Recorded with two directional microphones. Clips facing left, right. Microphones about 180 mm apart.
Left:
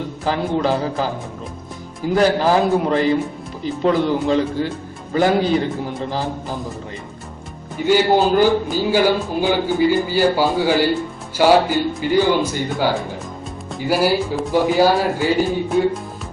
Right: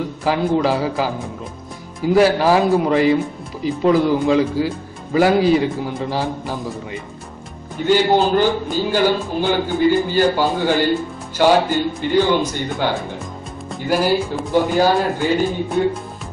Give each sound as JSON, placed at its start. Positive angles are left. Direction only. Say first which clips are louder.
{"t": 0.2, "sound": "a man's voice", "louder": "right 2 dB", "side_deg": -5}
{"t": 7.8, "sound": "a man's voice", "louder": "even", "side_deg": 5}